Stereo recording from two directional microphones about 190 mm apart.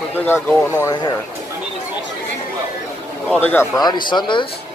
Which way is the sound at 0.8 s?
20° left (ahead or behind).